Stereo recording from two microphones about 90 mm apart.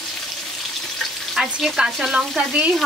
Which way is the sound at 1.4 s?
5° right (ahead or behind).